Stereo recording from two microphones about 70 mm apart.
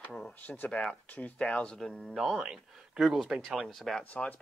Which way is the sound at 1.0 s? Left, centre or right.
Left.